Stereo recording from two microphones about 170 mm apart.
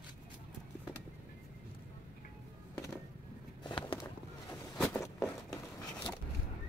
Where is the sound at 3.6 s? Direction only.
25° left (ahead or behind).